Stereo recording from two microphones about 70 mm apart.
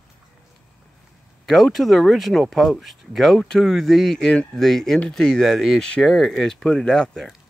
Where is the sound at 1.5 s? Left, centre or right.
Centre.